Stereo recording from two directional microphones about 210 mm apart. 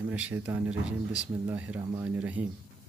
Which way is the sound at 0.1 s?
10° right (ahead or behind).